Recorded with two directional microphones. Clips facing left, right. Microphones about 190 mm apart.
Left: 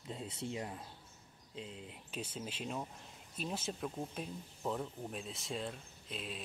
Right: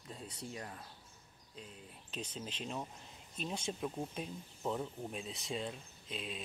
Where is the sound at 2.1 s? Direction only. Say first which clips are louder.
Even; 10° left (ahead or behind).